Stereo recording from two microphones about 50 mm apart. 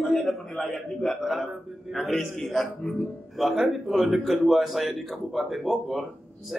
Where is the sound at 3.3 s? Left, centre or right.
Centre.